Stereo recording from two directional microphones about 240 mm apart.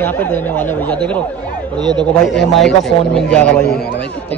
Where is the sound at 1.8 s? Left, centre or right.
Centre.